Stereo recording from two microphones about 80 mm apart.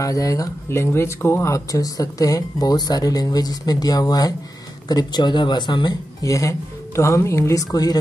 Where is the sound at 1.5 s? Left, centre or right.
Left.